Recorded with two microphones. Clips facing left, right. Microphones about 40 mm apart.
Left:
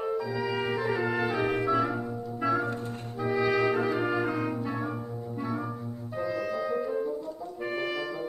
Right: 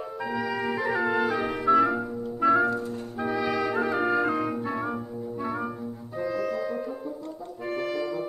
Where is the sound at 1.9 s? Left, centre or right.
Right.